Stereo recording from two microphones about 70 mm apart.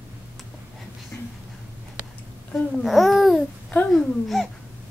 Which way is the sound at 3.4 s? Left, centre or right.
Centre.